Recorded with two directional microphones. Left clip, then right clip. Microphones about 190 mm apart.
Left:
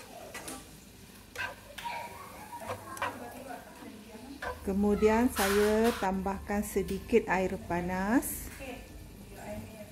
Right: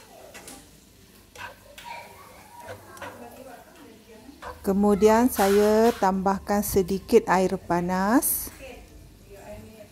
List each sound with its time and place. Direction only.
4.6 s speech: 30° right (ahead or behind)